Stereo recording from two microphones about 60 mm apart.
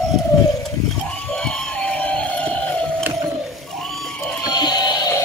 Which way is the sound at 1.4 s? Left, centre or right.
Centre.